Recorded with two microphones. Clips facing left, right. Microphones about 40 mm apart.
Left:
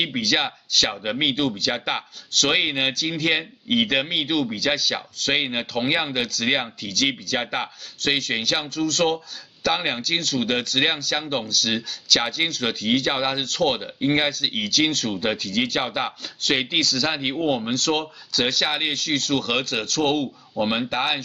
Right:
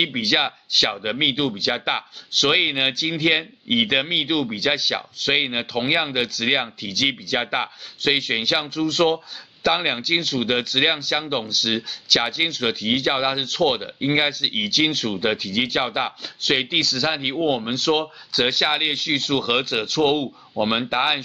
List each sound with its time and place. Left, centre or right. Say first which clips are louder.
0.0 s speech: right 2 dB; centre